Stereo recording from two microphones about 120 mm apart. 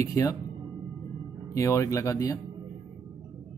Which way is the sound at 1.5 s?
25° left (ahead or behind).